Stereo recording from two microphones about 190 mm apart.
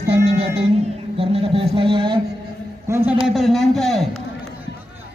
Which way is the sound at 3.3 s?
Centre (ahead or behind).